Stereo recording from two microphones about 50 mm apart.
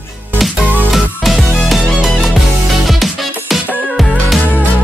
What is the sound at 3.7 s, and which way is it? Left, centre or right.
Music, right.